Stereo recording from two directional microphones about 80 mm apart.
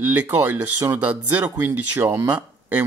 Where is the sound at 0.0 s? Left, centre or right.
Right.